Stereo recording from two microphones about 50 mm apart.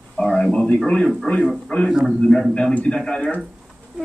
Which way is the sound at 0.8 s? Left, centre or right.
Centre.